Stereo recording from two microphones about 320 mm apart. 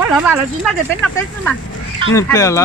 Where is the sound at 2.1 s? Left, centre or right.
Centre.